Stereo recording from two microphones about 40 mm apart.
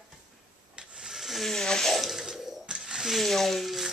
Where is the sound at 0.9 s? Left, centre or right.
Centre.